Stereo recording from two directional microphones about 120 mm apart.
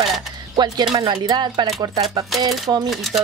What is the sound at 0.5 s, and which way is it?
Speech, 35° right (ahead or behind).